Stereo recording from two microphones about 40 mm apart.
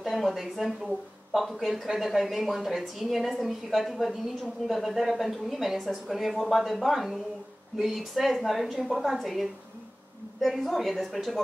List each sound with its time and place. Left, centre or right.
0.0 s a woman's voice: centre